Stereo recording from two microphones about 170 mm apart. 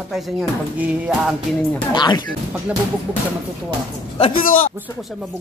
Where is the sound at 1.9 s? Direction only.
25° left (ahead or behind).